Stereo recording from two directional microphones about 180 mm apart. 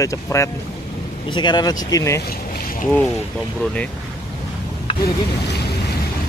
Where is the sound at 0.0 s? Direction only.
15° left (ahead or behind).